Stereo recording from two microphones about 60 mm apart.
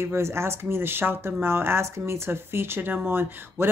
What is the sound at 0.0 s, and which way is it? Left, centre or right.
Speech, right.